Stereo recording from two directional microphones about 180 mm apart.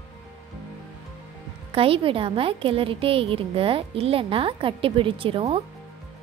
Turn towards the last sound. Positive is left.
turn(degrees=-30)  # may be behind; listen again after turning